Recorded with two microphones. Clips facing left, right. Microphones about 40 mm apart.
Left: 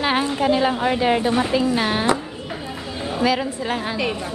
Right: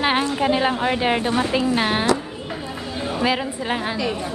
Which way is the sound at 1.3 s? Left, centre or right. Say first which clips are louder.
Left 1 dB; centre.